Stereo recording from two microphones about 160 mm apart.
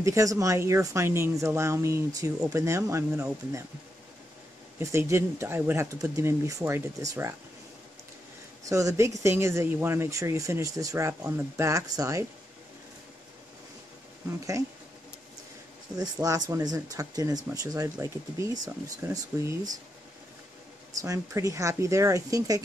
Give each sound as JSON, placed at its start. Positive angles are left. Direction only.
{"t": 0.0, "sound": "speech", "side_deg": -20}
{"t": 4.7, "sound": "speech", "side_deg": -20}
{"t": 8.6, "sound": "speech", "side_deg": -20}
{"t": 16.0, "sound": "speech", "side_deg": -25}
{"t": 20.9, "sound": "speech", "side_deg": -20}